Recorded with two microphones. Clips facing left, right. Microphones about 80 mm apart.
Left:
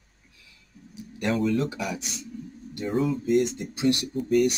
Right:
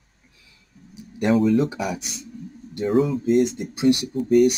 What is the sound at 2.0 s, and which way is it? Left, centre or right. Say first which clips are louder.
Speech: even; left.